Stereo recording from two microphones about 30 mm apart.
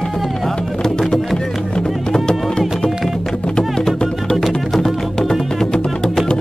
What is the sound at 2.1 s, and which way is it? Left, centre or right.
Music, left.